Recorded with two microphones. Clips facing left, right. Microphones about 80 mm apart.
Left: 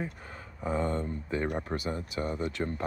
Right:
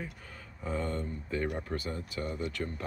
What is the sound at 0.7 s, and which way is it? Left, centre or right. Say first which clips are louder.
Speech: left 4 dB; left.